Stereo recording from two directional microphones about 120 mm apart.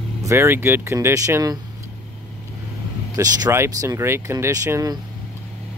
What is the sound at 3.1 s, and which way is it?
Speech, 30° right (ahead or behind).